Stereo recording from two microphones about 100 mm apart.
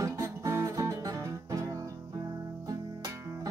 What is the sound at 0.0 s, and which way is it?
Music, 30° right (ahead or behind).